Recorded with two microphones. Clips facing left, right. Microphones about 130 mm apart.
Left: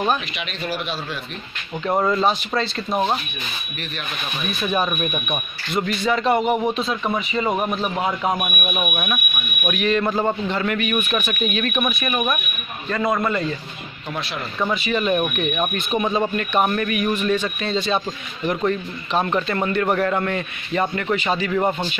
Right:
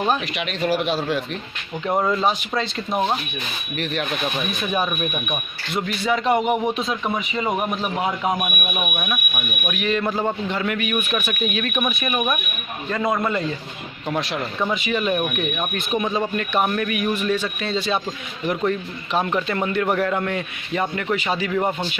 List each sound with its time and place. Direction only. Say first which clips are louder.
0.4 s a man's voice: right 5 dB; 65° right (ahead or behind)
2.0 s a man's voice: left 1 dB; 10° right (ahead or behind)
4.8 s a man's voice: left 1 dB; centre (ahead or behind)
12.9 s a man's voice: left 1 dB; 15° right (ahead or behind)
14.9 s a man's voice: left 3 dB; 5° right (ahead or behind)